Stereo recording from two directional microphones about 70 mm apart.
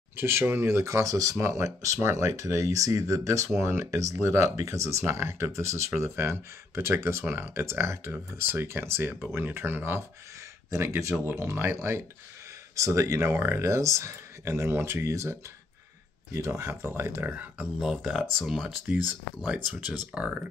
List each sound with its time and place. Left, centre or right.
0.1 s speech: right
16.3 s speech: right
18.0 s speech: centre
18.9 s speech: right